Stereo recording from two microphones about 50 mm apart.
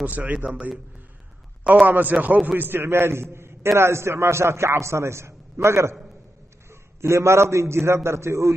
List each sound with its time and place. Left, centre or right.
0.0 s a man's voice: right
1.9 s a man's voice: right